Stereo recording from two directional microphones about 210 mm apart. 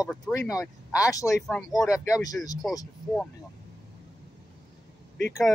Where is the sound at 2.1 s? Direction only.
15° left (ahead or behind).